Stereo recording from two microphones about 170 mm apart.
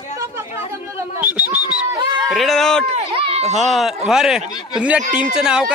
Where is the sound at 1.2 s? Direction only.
10° right (ahead or behind).